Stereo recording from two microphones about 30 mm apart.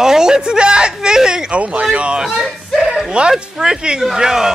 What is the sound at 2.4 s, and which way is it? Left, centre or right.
Speech, centre.